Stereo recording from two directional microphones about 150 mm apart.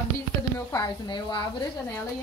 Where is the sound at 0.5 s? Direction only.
30° left (ahead or behind).